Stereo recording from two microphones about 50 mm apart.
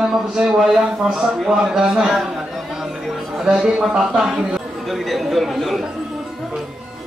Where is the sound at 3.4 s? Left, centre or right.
Centre.